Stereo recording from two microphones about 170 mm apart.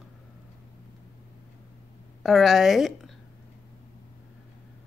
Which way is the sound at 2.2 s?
Centre (ahead or behind).